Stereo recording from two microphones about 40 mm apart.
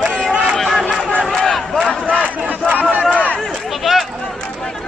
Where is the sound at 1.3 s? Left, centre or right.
Centre.